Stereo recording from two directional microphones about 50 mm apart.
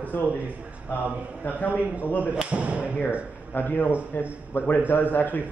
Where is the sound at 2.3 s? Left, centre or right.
Right.